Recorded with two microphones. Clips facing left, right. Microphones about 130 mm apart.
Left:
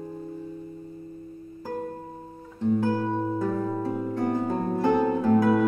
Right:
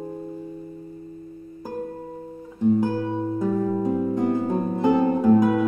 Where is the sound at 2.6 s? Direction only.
15° right (ahead or behind).